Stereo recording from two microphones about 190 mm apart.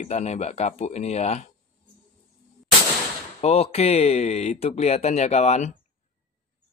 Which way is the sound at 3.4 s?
30° left (ahead or behind).